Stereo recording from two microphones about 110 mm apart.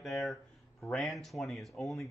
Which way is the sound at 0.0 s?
Centre (ahead or behind).